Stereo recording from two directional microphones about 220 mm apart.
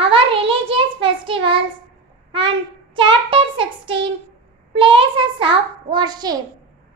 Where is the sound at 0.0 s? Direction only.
25° right (ahead or behind).